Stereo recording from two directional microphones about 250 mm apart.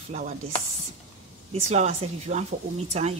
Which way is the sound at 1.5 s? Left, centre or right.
Right.